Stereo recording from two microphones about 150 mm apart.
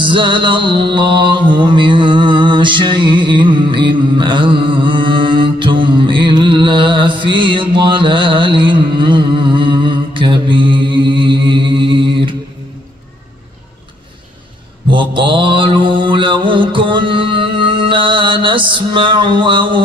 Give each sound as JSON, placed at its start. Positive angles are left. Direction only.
{"t": 0.0, "sound": "mantra", "side_deg": -35}
{"t": 14.9, "sound": "mantra", "side_deg": -35}